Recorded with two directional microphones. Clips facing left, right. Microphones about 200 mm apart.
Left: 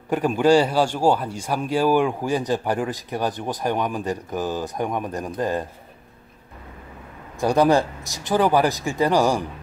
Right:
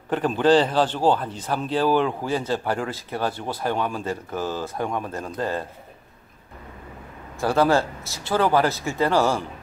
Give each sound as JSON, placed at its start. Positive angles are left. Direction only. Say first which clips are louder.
{"t": 0.1, "sound": "a man's voice", "louder": "left 1 dB", "side_deg": 10}
{"t": 7.3, "sound": "a man's voice", "louder": "left 2 dB", "side_deg": 15}